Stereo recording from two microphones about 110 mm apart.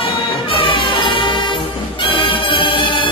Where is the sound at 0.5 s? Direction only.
50° left (ahead or behind).